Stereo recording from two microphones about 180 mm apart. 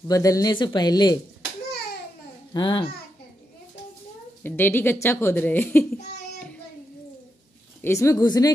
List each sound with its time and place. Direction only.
0.1 s speech: 20° left (ahead or behind)
2.5 s speech: 25° left (ahead or behind)
4.4 s speech: 10° left (ahead or behind)
7.8 s speech: 15° left (ahead or behind)